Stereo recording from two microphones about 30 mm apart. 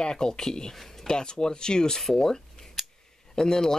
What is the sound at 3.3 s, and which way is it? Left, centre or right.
Speech, left.